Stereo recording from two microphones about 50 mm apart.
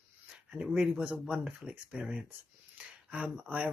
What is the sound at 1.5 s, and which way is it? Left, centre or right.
Speech, centre.